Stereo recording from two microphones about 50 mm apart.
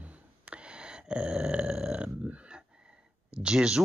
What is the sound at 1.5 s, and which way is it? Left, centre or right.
Speech, centre.